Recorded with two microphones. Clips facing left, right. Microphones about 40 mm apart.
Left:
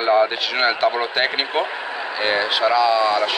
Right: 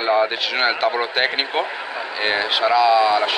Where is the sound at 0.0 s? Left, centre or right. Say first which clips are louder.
Left 1 dB; centre.